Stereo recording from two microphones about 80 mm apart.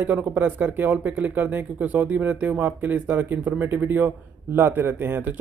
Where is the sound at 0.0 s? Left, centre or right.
Centre.